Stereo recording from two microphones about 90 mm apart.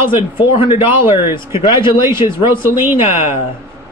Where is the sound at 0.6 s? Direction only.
75° left (ahead or behind).